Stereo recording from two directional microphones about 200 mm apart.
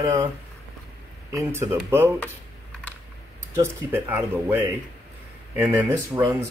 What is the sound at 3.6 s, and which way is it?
Speech, 10° right (ahead or behind).